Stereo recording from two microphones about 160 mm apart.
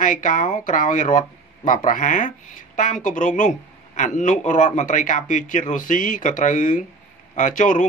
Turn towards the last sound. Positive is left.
turn(degrees=50)  # may be behind; listen again after turning